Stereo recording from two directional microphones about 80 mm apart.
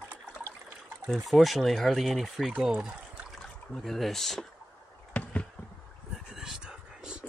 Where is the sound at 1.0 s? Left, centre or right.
Centre.